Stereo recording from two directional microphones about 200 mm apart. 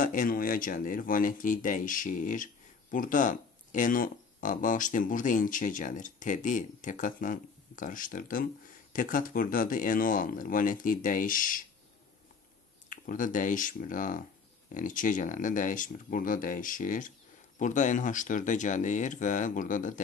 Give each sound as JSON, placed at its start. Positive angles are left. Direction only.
{"t": 0.0, "sound": "speech", "side_deg": 45}
{"t": 12.9, "sound": "speech", "side_deg": 40}